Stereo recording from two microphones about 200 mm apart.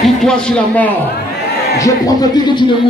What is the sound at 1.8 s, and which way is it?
Speech, 20° left (ahead or behind).